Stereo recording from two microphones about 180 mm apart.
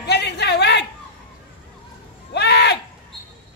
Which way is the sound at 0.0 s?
70° left (ahead or behind).